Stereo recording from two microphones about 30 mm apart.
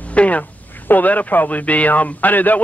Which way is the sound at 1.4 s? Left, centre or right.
Left.